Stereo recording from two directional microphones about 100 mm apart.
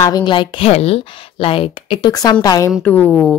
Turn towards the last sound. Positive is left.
turn(degrees=15)  # may be behind; listen again after turning